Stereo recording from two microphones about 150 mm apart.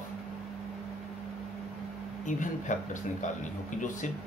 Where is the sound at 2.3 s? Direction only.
55° left (ahead or behind).